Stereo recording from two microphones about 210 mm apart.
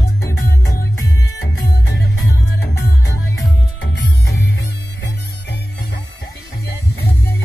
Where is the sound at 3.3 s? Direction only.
55° left (ahead or behind).